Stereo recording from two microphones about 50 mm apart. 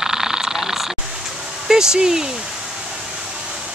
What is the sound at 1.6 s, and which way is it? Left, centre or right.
Speech, centre.